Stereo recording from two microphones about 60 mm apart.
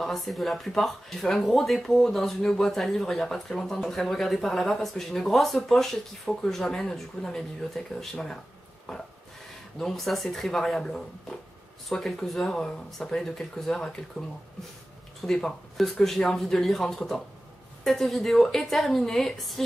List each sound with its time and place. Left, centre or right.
0.0 s speech: centre
8.9 s a sound: centre
9.8 s speech: centre
12.4 s speech: centre
15.2 s speech: centre